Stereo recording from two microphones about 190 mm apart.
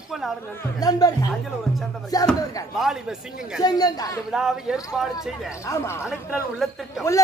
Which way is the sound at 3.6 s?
20° left (ahead or behind).